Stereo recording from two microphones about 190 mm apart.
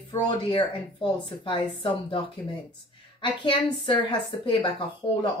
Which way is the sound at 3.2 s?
25° left (ahead or behind).